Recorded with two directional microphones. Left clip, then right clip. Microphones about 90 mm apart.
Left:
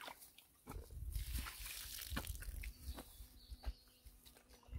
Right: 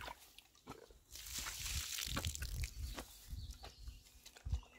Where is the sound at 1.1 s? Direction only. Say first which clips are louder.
Right 5 dB; 35° right (ahead or behind).